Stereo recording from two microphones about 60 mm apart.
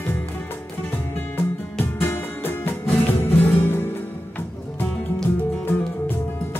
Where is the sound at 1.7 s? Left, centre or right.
Left.